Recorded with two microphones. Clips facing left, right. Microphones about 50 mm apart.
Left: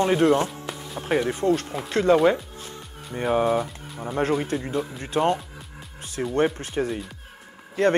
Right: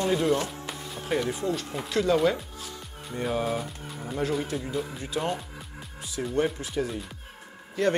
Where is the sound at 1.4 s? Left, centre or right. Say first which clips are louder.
Left 7 dB; left.